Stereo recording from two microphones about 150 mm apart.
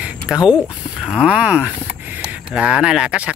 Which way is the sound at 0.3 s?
5° right (ahead or behind).